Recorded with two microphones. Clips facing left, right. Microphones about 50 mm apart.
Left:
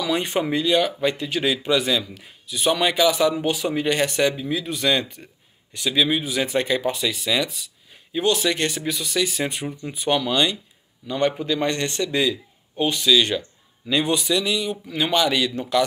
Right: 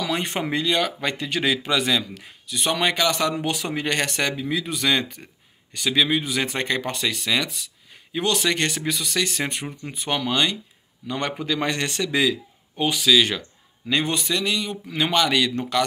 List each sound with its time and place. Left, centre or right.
0.2 s speech: right
9.4 s speech: right
11.1 s speech: right
11.3 s a man's voice: right
13.8 s speech: right
14.5 s speech: right
15.0 s speech: right